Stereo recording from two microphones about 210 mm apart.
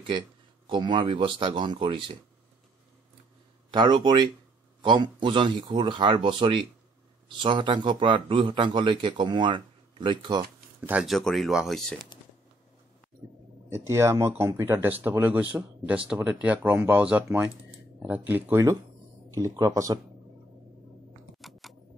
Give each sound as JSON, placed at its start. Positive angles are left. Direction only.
{"t": 0.7, "sound": "a man's voice", "side_deg": -20}
{"t": 3.7, "sound": "a man's voice", "side_deg": -20}
{"t": 10.9, "sound": "speech", "side_deg": -5}
{"t": 13.7, "sound": "speech", "side_deg": -10}
{"t": 21.4, "sound": "a sound", "side_deg": 0}